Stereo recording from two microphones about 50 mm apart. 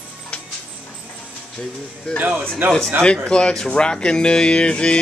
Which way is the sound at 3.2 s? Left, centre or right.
Centre.